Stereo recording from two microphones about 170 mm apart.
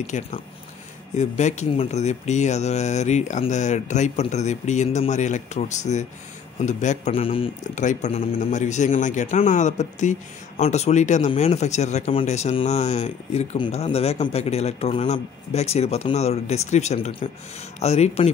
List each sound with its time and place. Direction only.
0.0 s speech: 45° left (ahead or behind)
7.6 s speech: 45° left (ahead or behind)